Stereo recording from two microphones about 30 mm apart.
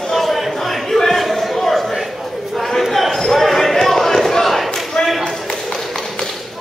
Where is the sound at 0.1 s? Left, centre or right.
Centre.